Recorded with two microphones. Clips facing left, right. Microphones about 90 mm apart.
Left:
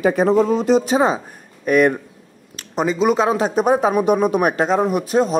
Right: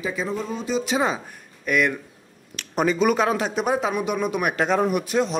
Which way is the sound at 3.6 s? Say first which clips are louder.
Left 7 dB; 40° left (ahead or behind).